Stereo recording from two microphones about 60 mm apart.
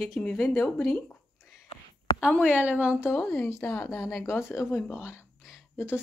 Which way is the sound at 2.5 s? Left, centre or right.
Right.